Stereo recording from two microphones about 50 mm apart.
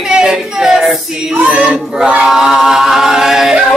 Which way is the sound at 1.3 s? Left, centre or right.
Right.